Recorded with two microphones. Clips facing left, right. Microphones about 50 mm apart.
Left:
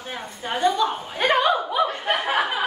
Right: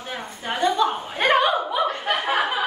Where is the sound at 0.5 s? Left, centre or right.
Right.